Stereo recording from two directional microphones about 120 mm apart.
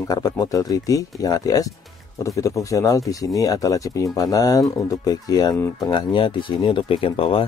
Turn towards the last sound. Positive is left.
turn(degrees=50)  # may be behind; listen again after turning